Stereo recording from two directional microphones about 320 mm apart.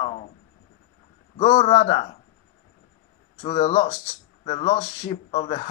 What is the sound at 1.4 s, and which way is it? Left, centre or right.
Speech, left.